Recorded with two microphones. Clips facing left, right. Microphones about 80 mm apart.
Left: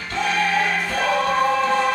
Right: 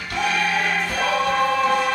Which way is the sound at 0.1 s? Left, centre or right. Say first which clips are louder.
Left 1 dB; centre.